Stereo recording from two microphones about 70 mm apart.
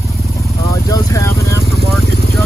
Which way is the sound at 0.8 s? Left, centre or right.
Left.